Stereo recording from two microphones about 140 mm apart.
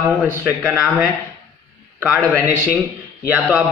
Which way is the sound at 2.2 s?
10° left (ahead or behind).